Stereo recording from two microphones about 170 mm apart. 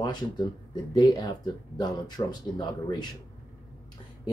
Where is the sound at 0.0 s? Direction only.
25° left (ahead or behind).